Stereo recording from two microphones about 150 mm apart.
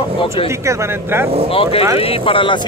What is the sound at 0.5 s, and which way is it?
Speech, 20° right (ahead or behind).